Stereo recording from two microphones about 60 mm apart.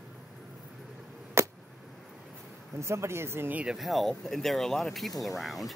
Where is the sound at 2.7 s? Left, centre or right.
Right.